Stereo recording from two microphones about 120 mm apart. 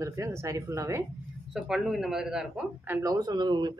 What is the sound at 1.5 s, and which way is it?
A man's voice, 5° right (ahead or behind).